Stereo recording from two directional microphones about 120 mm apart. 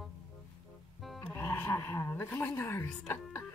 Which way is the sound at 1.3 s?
20° left (ahead or behind).